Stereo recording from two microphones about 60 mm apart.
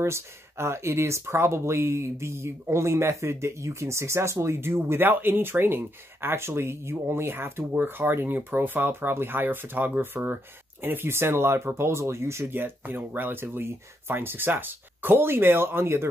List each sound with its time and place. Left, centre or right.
0.0 s speech: right
12.5 s speech: right